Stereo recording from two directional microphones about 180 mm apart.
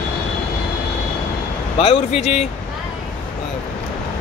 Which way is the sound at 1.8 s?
35° left (ahead or behind).